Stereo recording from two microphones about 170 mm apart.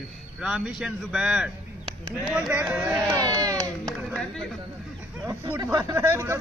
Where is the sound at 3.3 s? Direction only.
20° right (ahead or behind).